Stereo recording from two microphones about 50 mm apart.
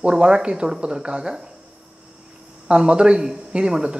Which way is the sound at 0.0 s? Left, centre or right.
Centre.